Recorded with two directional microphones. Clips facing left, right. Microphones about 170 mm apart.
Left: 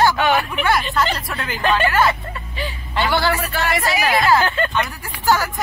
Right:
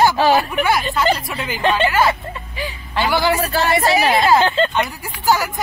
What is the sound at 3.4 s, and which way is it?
Speech, 30° right (ahead or behind).